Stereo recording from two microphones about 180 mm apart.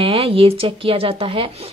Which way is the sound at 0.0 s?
30° right (ahead or behind).